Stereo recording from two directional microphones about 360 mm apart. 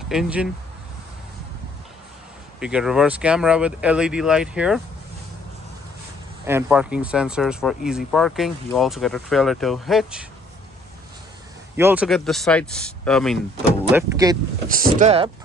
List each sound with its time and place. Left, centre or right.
0.1 s speech: centre
2.6 s speech: centre
6.4 s speech: centre
11.7 s speech: centre
14.7 s speech: right